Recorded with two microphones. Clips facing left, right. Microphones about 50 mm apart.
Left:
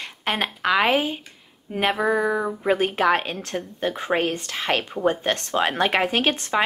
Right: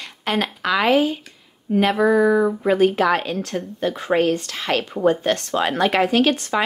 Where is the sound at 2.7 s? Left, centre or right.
Left.